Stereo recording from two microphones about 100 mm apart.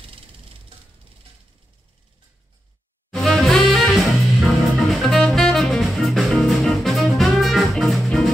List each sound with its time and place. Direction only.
0.0 s music: 65° right (ahead or behind)
3.1 s music: 5° left (ahead or behind)